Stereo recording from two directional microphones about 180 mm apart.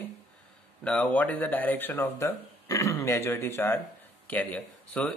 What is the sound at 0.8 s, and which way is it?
A man's voice, 5° left (ahead or behind).